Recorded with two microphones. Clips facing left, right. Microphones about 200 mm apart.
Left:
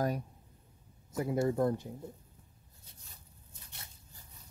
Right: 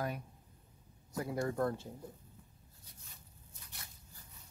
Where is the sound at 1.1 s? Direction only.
25° left (ahead or behind).